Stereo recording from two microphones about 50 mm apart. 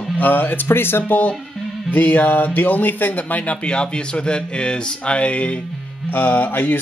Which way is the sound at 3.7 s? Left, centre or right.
Left.